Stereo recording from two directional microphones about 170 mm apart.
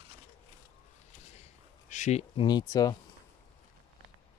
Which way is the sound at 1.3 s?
40° left (ahead or behind).